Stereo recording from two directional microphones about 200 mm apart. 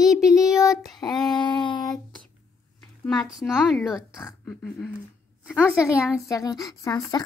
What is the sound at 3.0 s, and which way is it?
A woman's voice, centre (ahead or behind).